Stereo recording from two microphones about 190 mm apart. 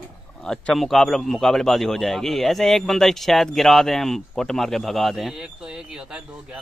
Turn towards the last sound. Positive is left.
turn(degrees=-5)  # may be behind; listen again after turning